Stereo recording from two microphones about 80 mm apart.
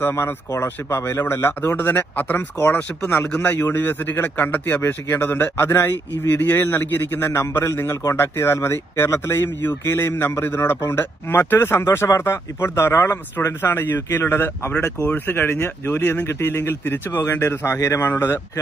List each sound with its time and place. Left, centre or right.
0.1 s a man's voice: left